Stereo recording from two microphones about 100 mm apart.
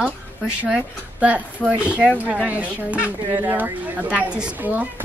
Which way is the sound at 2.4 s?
15° right (ahead or behind).